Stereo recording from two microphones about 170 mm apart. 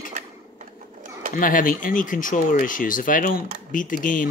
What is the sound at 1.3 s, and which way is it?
Speech, 50° left (ahead or behind).